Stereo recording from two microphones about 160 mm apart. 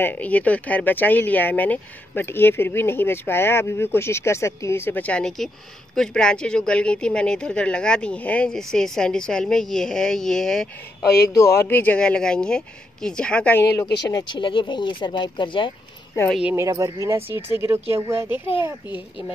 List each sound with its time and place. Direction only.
0.0 s a woman's voice: 10° left (ahead or behind)
11.2 s speech: 20° left (ahead or behind)
14.0 s speech: 30° left (ahead or behind)
16.3 s a woman's voice: 5° right (ahead or behind)
16.5 s speech: 20° right (ahead or behind)